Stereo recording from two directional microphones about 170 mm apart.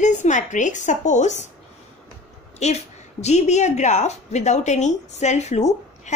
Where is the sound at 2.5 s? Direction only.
40° left (ahead or behind).